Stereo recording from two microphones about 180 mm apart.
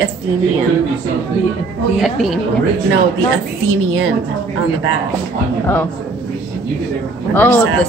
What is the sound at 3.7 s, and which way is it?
Speech, 90° right.